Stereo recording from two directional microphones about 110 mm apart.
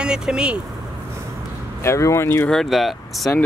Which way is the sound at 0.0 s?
5° right (ahead or behind).